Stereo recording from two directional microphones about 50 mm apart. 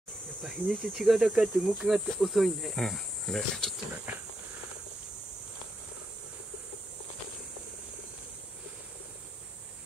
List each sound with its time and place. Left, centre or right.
0.4 s cricket: centre
2.1 s cricket: centre
3.9 s speech: right